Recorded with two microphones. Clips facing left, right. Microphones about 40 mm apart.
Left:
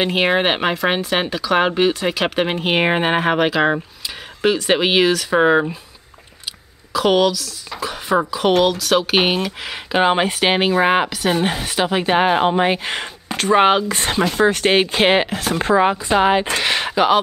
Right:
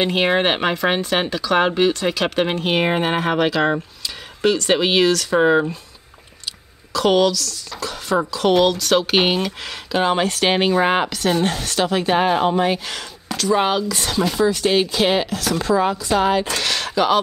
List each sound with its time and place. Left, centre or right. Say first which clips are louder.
0.0 s speech: left 1 dB; centre
6.9 s speech: left 1 dB; centre
9.9 s speech: left 2 dB; left